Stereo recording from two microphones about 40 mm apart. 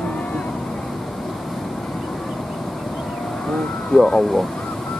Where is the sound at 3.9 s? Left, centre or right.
Centre.